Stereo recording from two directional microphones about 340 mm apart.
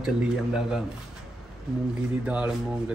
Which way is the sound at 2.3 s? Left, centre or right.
Centre.